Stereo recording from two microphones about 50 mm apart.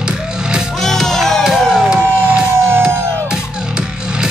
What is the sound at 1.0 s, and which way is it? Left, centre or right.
Music, centre.